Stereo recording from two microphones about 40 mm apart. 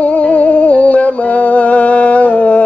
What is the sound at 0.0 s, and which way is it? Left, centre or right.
Music, left.